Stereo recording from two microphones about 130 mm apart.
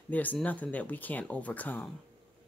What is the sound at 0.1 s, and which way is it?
Speech, 10° left (ahead or behind).